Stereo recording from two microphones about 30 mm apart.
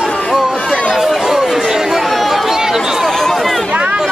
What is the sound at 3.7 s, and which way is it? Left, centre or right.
Chatter, right.